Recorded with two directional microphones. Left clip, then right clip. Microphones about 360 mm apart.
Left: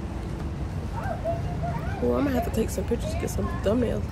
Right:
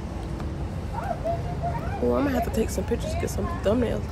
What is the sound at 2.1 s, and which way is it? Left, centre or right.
Speech, centre.